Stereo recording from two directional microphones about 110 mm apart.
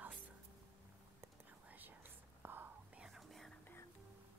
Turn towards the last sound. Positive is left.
turn(degrees=0)  # may be behind; listen again after turning